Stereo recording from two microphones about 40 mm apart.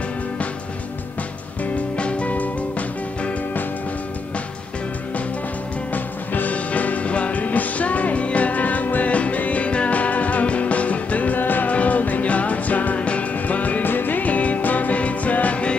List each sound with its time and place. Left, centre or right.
2.0 s music: left
5.9 s music: left
11.3 s music: left
11.7 s music: left
13.8 s music: left